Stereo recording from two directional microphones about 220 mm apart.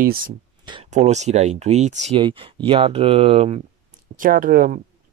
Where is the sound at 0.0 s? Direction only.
40° right (ahead or behind).